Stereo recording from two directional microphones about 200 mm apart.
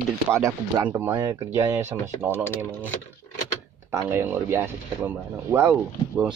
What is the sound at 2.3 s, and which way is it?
Speech, 10° left (ahead or behind).